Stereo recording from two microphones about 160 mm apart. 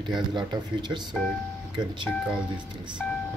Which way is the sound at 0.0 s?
30° right (ahead or behind).